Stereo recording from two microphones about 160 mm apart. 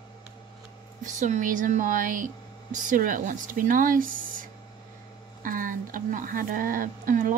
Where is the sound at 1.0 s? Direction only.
50° right (ahead or behind).